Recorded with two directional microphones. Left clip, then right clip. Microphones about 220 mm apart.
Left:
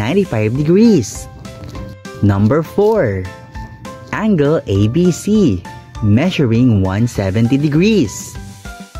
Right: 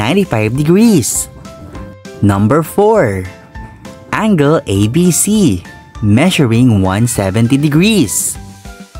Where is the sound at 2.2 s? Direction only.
30° right (ahead or behind).